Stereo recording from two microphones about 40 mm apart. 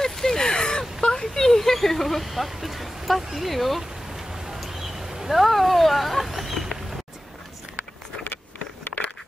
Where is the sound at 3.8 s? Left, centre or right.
Centre.